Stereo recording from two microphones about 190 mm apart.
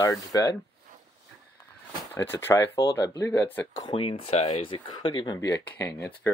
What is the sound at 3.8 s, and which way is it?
Speech, 25° left (ahead or behind).